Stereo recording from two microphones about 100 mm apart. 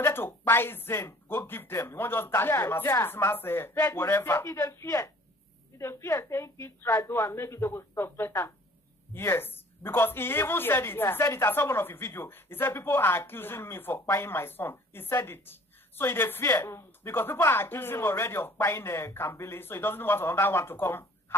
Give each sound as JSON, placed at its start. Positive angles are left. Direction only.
{"t": 0.0, "sound": "a woman's voice", "side_deg": 25}